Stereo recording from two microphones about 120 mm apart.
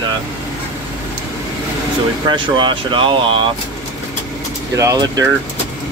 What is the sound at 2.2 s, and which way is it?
Speech, 40° right (ahead or behind).